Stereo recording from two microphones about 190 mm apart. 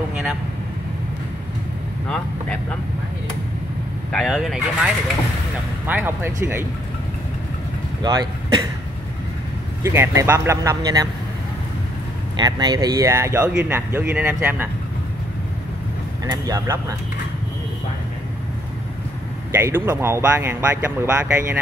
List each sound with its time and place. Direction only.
4.1 s speech: centre (ahead or behind)
5.9 s speech: 10° right (ahead or behind)
8.0 s speech: 20° right (ahead or behind)
9.8 s speech: 15° right (ahead or behind)
12.4 s speech: 20° right (ahead or behind)
16.3 s speech: 20° right (ahead or behind)
19.5 s speech: 10° right (ahead or behind)